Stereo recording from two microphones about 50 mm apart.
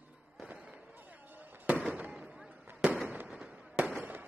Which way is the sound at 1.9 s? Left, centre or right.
Right.